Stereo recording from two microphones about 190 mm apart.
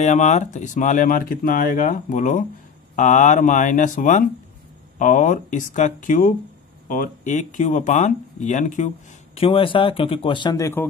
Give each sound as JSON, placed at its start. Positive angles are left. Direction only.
{"t": 0.0, "sound": "speech", "side_deg": 35}